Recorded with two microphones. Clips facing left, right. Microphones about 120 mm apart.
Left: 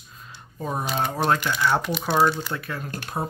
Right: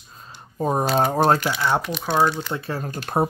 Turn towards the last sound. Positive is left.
turn(degrees=-55)  # may be behind; listen again after turning